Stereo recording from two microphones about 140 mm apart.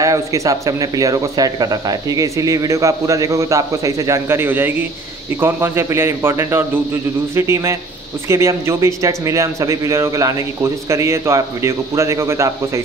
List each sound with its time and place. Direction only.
0.0 s a man's voice: 25° right (ahead or behind)